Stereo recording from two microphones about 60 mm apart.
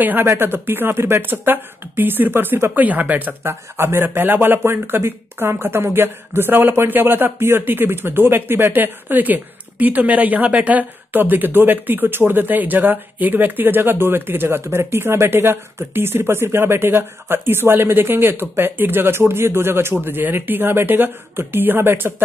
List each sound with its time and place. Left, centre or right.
0.0 s speech: right
0.3 s speech: right
3.4 s speech: right